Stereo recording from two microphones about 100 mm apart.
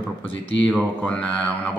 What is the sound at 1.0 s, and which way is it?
Speech, 15° left (ahead or behind).